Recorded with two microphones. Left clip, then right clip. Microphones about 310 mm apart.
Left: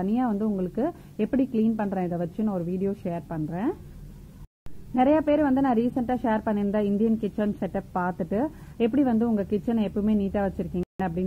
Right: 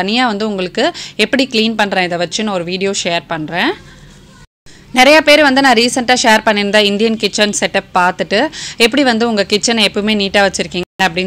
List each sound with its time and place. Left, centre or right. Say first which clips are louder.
0.0 s a woman's voice: right 13 dB; centre
1.4 s a woman's voice: right 13 dB; right
1.8 s a woman's voice: right 15 dB; centre
4.9 s a woman's voice: right 15 dB; centre